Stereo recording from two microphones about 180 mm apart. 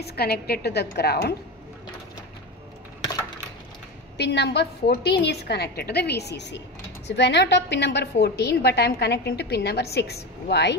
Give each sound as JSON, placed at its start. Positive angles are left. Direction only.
{"t": 0.0, "sound": "a woman's voice", "side_deg": 60}
{"t": 4.2, "sound": "a woman's voice", "side_deg": 70}